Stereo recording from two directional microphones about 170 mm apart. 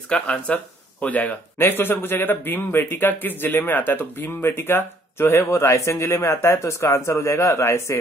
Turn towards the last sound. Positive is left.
turn(degrees=15)  # may be behind; listen again after turning